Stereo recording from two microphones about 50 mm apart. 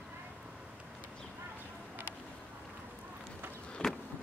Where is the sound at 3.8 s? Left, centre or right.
Left.